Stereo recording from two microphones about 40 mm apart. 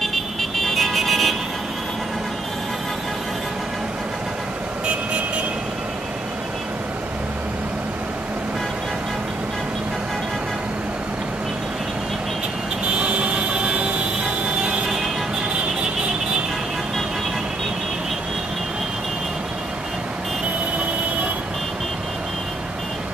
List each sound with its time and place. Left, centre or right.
0.0 s vehicle: centre
12.9 s vehicle: right